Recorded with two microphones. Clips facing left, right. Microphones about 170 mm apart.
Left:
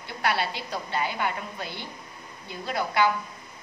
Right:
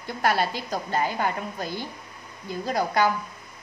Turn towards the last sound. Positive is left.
turn(degrees=-40)  # may be behind; listen again after turning